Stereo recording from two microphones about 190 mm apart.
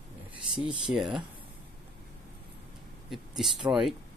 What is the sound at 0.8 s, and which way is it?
Speech, centre (ahead or behind).